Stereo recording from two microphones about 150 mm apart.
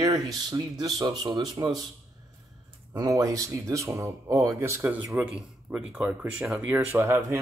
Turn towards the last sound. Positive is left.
turn(degrees=-20)  # may be behind; listen again after turning